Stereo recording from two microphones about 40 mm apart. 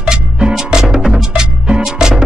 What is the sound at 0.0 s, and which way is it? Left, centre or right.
Music, centre.